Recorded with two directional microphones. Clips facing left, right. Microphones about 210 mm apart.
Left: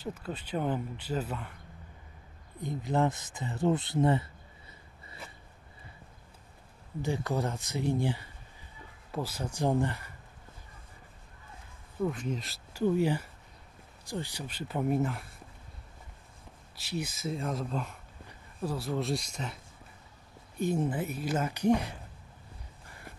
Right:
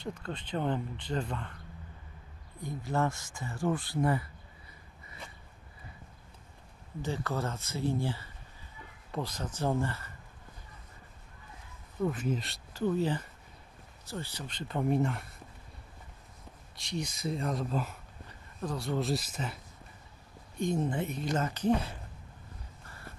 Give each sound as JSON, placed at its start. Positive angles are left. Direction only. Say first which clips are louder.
{"t": 0.0, "sound": "speech", "louder": "left 1 dB", "side_deg": 5}
{"t": 2.6, "sound": "speech", "louder": "left 3 dB", "side_deg": 20}
{"t": 7.0, "sound": "speech", "louder": "left 3 dB", "side_deg": 15}
{"t": 12.0, "sound": "speech", "louder": "right 1 dB", "side_deg": -5}
{"t": 12.7, "sound": "speech", "louder": "left 3 dB", "side_deg": 10}
{"t": 16.7, "sound": "speech", "louder": "left 1 dB", "side_deg": 5}
{"t": 20.5, "sound": "speech", "louder": "left 1 dB", "side_deg": 5}
{"t": 22.8, "sound": "a sound", "louder": "even", "side_deg": 15}